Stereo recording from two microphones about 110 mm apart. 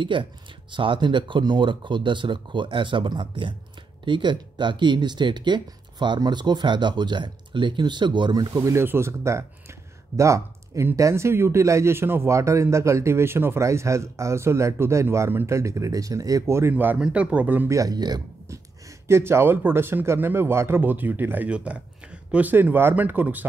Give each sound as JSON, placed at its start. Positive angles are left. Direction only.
{"t": 0.0, "sound": "a man's voice", "side_deg": -50}
{"t": 17.6, "sound": "speech", "side_deg": -35}
{"t": 19.0, "sound": "a man's voice", "side_deg": -25}